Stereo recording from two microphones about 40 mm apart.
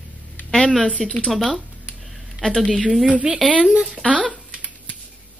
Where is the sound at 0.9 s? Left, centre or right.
Left.